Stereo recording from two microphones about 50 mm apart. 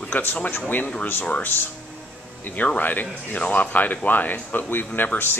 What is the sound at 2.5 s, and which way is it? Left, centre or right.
Speech, left.